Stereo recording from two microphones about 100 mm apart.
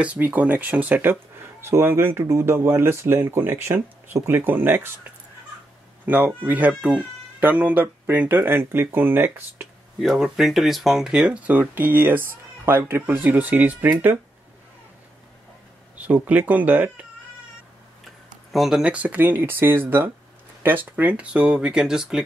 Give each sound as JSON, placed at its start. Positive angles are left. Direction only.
{"t": 0.0, "sound": "speech", "side_deg": -15}
{"t": 6.0, "sound": "speech", "side_deg": -20}
{"t": 9.9, "sound": "speech", "side_deg": 0}
{"t": 16.0, "sound": "speech", "side_deg": -15}
{"t": 18.5, "sound": "speech", "side_deg": -5}